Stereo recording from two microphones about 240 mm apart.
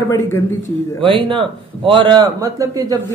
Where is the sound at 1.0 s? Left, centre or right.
Right.